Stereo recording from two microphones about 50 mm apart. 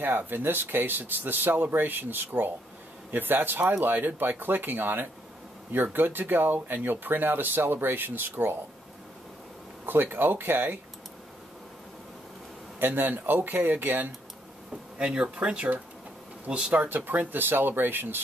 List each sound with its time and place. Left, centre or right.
0.0 s speech: right
9.8 s speech: right
12.7 s speech: right
15.0 s speech: centre
16.9 s speech: right